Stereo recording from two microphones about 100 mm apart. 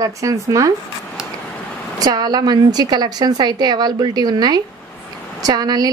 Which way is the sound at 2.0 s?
40° right (ahead or behind).